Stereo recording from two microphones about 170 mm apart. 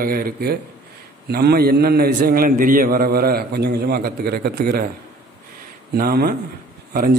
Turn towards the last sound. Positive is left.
turn(degrees=-60)  # may be behind; listen again after turning